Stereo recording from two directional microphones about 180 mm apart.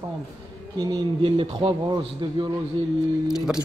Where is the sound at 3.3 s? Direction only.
5° right (ahead or behind).